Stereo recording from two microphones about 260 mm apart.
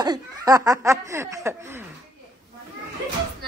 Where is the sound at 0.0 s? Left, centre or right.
Centre.